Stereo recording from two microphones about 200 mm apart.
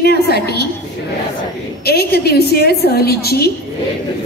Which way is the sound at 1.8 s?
50° left (ahead or behind).